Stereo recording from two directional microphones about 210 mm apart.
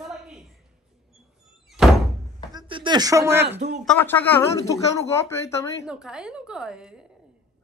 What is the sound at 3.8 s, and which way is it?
Speech, 10° left (ahead or behind).